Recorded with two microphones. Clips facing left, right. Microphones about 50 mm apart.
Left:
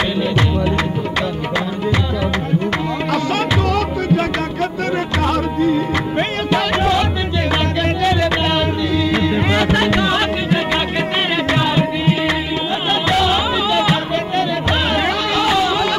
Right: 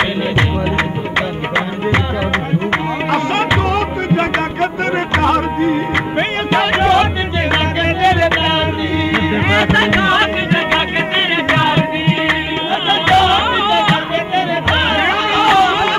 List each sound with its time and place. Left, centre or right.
0.0 s music: right